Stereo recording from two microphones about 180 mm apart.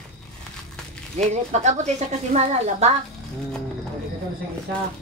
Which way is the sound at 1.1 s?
40° right (ahead or behind).